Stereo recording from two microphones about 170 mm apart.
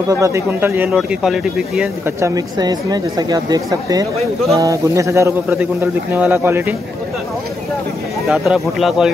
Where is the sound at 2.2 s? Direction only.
20° right (ahead or behind).